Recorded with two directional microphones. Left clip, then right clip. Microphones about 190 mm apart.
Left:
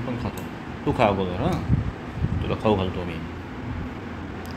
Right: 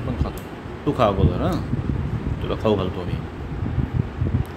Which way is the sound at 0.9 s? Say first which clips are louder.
Right 2 dB; 20° right (ahead or behind).